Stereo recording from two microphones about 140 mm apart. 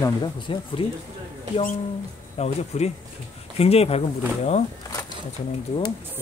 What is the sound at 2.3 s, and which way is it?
Speech, 50° left (ahead or behind).